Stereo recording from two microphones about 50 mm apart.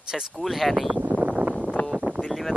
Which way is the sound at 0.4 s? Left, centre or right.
Centre.